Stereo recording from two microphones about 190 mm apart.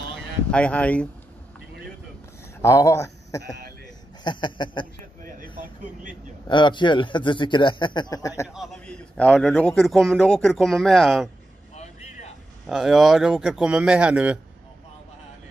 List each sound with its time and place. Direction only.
0.5 s speech: 5° left (ahead or behind)
2.6 s a man's voice: 15° left (ahead or behind)
6.4 s speech: 25° left (ahead or behind)
8.5 s a man's voice: 5° left (ahead or behind)
11.7 s vehicle: 35° left (ahead or behind)
12.6 s a man's voice: centre (ahead or behind)